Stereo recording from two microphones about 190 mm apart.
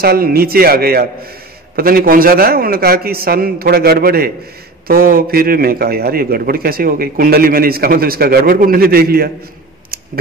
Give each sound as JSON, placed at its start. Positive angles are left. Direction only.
{"t": 0.0, "sound": "a man's voice", "side_deg": -55}